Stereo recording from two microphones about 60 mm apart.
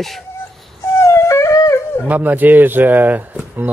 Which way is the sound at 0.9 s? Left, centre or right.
Left.